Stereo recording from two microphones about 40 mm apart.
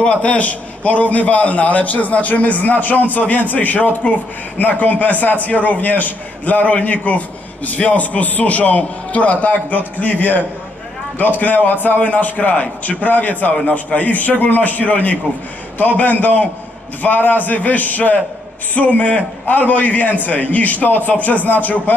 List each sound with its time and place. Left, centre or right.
0.0 s a man's voice: left